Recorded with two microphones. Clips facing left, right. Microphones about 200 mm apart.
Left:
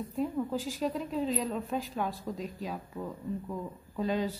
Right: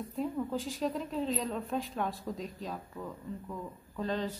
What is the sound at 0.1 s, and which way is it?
A woman's voice, centre (ahead or behind).